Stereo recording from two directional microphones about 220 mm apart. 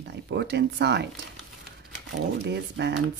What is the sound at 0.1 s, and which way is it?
Speech, 50° right (ahead or behind).